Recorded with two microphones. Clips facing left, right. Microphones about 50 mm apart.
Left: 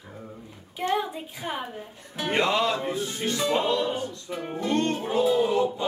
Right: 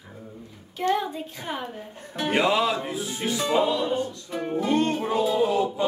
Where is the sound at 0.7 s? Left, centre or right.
Centre.